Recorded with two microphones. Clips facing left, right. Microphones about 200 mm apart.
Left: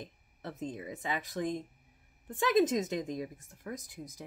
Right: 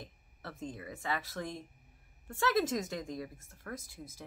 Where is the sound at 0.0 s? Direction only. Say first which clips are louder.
Left 4 dB; 20° left (ahead or behind).